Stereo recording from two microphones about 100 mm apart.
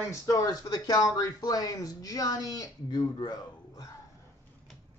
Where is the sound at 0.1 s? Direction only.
35° left (ahead or behind).